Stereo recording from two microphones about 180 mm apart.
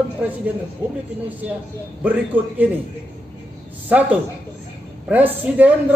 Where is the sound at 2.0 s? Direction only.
10° right (ahead or behind).